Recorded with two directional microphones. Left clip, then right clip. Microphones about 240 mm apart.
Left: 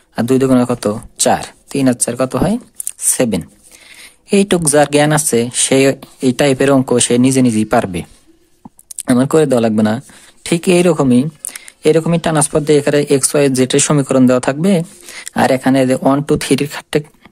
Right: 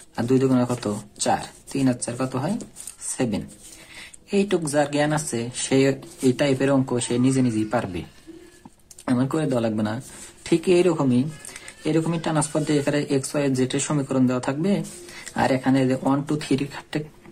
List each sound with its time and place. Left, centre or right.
0.1 s speech: left